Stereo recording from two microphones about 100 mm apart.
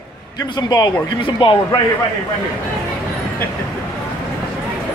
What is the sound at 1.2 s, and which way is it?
Speech, 60° left (ahead or behind).